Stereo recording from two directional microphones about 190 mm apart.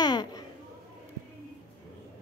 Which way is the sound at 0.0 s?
20° left (ahead or behind).